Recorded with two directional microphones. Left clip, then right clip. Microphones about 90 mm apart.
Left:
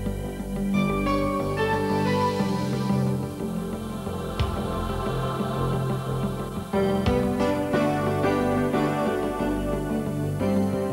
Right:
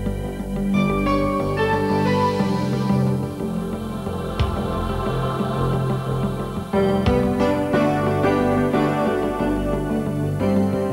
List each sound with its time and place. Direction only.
0.7 s music: 30° left (ahead or behind)
6.7 s music: 30° left (ahead or behind)